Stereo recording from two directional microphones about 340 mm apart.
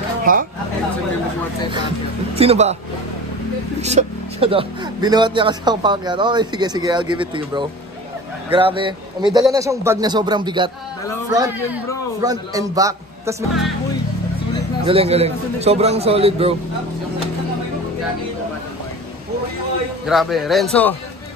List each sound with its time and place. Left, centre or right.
0.2 s speech: right
2.3 s speech: centre
3.8 s speech: centre
14.9 s speech: centre
20.1 s a man's voice: centre